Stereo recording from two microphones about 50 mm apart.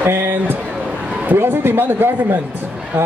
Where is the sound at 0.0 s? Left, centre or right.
Right.